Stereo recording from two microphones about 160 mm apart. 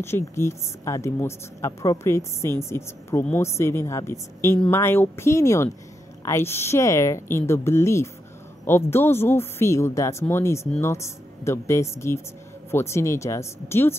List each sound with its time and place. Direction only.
0.0 s speech: 15° left (ahead or behind)